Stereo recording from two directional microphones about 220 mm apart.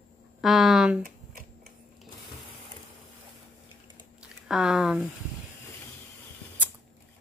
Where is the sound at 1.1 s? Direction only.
40° right (ahead or behind).